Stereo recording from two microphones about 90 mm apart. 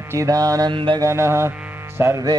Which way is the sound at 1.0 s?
30° right (ahead or behind).